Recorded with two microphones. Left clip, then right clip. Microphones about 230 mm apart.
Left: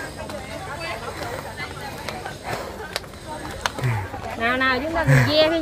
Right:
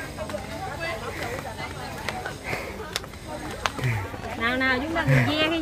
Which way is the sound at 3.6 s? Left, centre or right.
Centre.